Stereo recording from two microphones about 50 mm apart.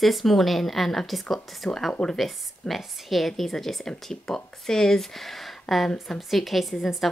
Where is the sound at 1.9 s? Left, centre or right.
Centre.